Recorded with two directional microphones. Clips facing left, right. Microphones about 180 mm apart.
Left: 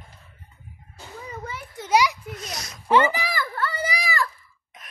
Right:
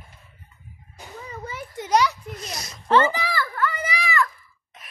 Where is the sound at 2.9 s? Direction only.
10° left (ahead or behind).